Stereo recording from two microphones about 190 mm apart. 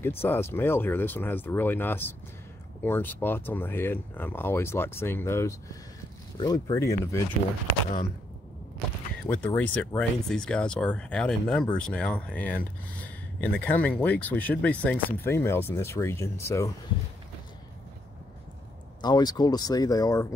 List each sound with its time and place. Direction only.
0.0 s speech: 10° left (ahead or behind)
9.2 s speech: 5° left (ahead or behind)
18.9 s speech: 20° left (ahead or behind)